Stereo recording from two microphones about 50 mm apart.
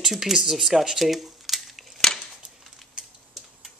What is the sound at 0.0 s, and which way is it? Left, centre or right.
Speech, centre.